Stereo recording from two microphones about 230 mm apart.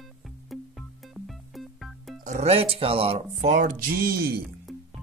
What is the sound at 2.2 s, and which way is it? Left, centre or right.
Speech, right.